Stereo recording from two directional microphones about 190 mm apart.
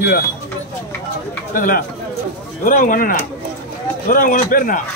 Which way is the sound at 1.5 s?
45° left (ahead or behind).